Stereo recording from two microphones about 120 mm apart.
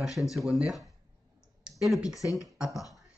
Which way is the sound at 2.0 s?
25° left (ahead or behind).